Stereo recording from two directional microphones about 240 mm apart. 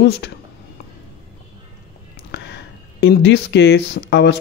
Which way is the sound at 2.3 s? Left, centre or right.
Left.